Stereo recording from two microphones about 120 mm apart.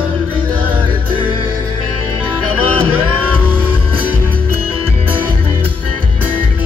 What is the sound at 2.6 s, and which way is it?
Music, 50° right (ahead or behind).